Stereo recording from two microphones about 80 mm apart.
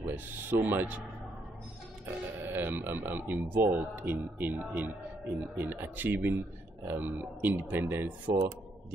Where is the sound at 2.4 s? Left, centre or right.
Right.